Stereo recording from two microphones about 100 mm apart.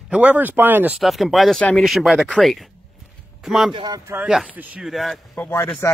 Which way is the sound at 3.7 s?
45° right (ahead or behind).